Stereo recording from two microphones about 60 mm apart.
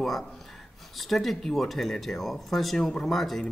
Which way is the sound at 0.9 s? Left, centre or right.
Centre.